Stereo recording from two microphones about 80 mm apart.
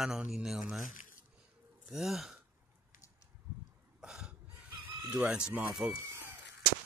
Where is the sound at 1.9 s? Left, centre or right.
Centre.